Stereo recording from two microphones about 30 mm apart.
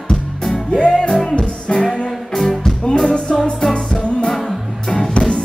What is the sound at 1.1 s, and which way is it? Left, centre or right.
Music, centre.